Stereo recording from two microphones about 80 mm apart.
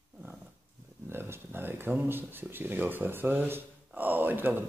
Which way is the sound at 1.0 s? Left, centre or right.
Right.